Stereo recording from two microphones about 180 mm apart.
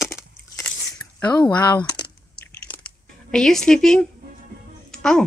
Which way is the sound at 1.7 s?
25° left (ahead or behind).